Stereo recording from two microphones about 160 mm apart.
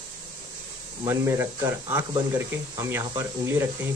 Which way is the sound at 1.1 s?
15° right (ahead or behind).